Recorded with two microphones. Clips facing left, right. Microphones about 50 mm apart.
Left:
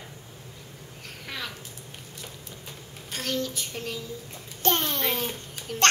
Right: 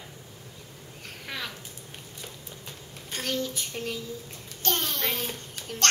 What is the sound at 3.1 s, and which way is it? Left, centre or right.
Child singing, centre.